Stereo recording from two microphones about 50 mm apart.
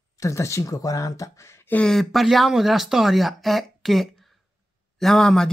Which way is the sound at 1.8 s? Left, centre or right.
Centre.